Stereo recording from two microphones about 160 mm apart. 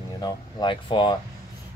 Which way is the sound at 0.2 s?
25° left (ahead or behind).